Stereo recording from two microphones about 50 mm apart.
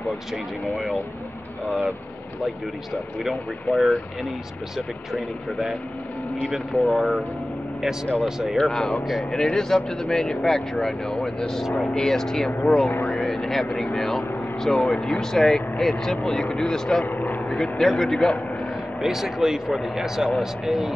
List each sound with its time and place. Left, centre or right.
0.3 s speech: centre
3.2 s speech: centre
6.5 s speech: centre
8.5 s speech: centre
17.0 s vehicle: left
17.5 s speech: centre
18.9 s speech: centre